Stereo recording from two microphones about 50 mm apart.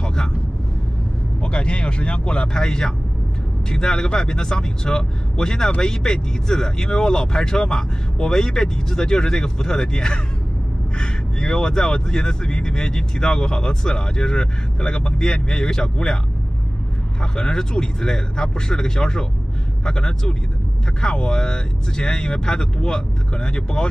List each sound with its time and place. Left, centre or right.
0.0 s vehicle: centre
1.4 s speech: left
17.2 s speech: centre